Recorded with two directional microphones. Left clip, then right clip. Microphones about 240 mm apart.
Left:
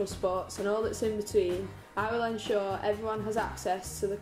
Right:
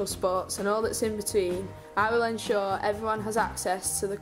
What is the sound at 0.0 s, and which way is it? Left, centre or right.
A woman's voice, centre.